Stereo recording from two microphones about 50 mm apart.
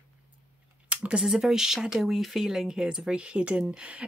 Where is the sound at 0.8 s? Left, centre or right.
Right.